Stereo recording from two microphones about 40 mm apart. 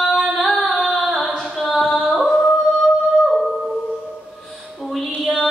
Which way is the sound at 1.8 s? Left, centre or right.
Left.